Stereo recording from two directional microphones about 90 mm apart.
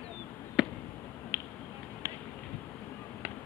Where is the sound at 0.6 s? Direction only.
5° right (ahead or behind).